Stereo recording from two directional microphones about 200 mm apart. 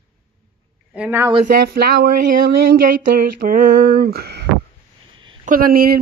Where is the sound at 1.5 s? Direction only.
50° right (ahead or behind).